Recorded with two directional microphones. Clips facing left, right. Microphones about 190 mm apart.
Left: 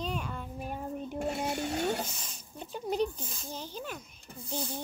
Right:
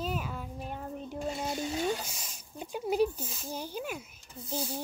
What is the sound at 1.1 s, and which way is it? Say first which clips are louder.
Speech: left 1 dB; 65° left (ahead or behind).